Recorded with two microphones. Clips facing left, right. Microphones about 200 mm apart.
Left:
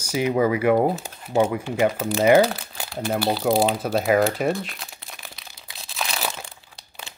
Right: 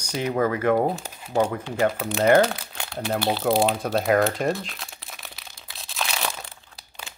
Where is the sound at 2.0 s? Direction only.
Centre (ahead or behind).